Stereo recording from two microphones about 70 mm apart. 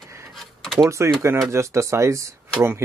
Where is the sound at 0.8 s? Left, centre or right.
Right.